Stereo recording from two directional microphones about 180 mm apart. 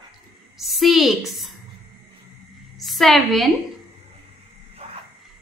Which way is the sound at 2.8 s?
Centre (ahead or behind).